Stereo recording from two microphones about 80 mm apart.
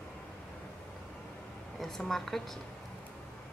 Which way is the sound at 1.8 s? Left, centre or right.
Centre.